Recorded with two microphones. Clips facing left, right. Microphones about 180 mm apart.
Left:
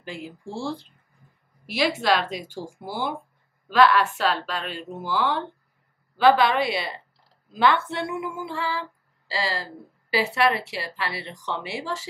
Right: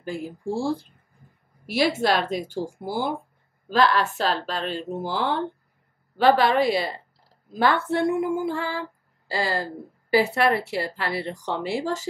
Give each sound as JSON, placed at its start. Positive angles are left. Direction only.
{"t": 0.0, "sound": "a woman's voice", "side_deg": -45}
{"t": 3.6, "sound": "a woman's voice", "side_deg": -40}